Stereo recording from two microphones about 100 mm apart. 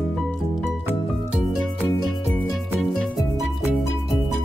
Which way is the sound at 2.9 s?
5° left (ahead or behind).